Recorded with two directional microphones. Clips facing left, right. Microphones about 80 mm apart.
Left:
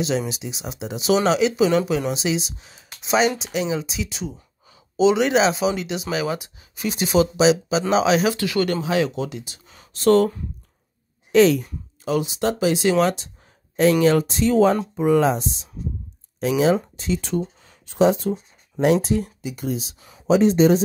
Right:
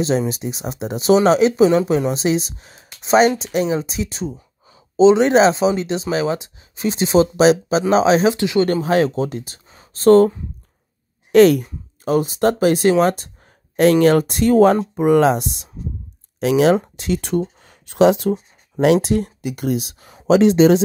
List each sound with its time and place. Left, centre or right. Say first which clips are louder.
0.3 s speech: right 6 dB; right
7.3 s speech: right 4 dB; right
7.9 s speech: right 4 dB; right
8.8 s speech: right 5 dB; right
11.3 s speech: right 4 dB; right
16.9 s a sound: right 4 dB; right
17.9 s speech: right 4 dB; right
20.2 s speech: right 4 dB; right